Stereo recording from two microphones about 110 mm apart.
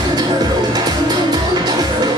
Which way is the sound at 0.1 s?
40° right (ahead or behind).